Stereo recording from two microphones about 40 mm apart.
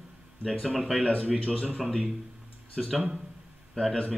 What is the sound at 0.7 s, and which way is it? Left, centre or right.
Speech, centre.